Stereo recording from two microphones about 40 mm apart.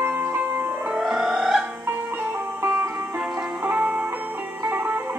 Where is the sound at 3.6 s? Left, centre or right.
Right.